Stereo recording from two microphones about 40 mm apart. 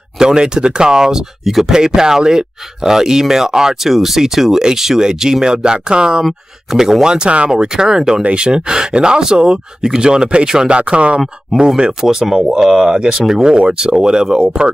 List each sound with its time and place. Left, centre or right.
0.2 s speech: centre
1.4 s speech: centre
1.7 s speech: centre
7.5 s speech: centre
8.2 s speech: right
10.8 s speech: right
11.5 s speech: centre